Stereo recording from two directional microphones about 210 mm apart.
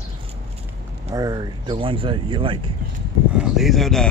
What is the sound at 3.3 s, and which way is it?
Speech, 5° right (ahead or behind).